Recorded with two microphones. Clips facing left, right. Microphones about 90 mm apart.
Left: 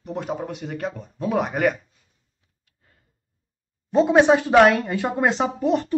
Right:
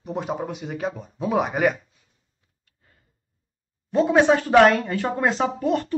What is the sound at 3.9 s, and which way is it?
Speech, 20° left (ahead or behind).